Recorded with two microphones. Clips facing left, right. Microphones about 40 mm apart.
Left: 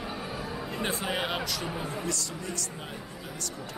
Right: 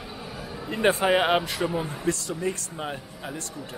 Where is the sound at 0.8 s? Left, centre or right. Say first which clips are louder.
Right 11 dB; right.